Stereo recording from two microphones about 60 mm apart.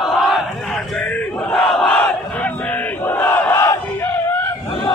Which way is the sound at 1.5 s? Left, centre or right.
Centre.